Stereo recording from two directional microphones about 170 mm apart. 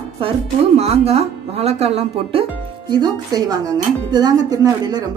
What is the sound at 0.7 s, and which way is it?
Speech, 35° right (ahead or behind).